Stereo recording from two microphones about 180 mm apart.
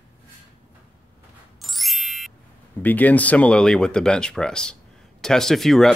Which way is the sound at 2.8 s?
10° left (ahead or behind).